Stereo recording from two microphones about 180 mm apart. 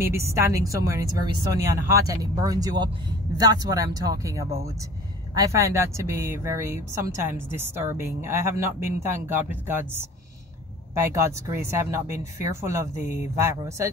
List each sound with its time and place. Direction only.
0.0 s speech: 15° right (ahead or behind)